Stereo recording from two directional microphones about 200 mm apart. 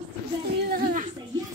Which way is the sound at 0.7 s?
45° right (ahead or behind).